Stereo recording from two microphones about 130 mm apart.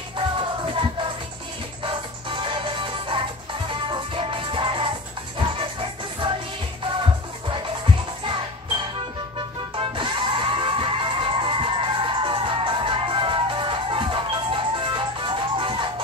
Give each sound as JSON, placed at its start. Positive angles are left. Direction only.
{"t": 1.9, "sound": "music", "side_deg": -40}
{"t": 9.8, "sound": "music", "side_deg": -40}